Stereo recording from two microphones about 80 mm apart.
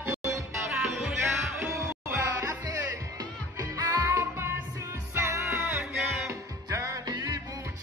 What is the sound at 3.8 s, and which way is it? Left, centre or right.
Music, right.